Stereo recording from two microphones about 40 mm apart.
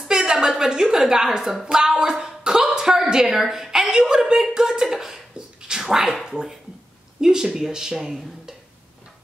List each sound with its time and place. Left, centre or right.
0.1 s a woman's voice: centre
1.7 s a sound: centre
3.3 s a woman's voice: centre
5.7 s dog: centre
6.2 s speech: centre